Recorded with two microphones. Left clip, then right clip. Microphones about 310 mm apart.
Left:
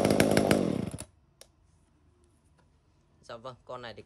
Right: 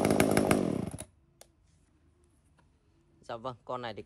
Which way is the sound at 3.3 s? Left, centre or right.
Centre.